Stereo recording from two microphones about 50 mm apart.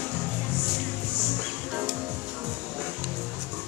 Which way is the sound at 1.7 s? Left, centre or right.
Centre.